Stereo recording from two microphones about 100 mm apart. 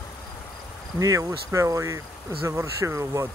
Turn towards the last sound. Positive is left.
turn(degrees=-30)  # may be behind; listen again after turning